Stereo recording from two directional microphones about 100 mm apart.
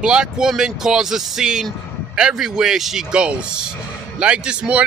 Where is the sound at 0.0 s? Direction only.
5° right (ahead or behind).